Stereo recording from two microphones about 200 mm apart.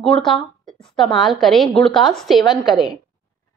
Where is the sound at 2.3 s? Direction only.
20° left (ahead or behind).